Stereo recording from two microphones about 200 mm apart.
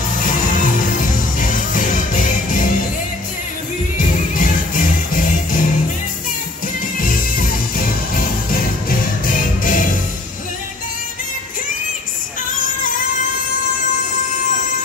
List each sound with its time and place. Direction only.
1.4 s music: 40° left (ahead or behind)
4.0 s music: 40° left (ahead or behind)
7.0 s music: 45° left (ahead or behind)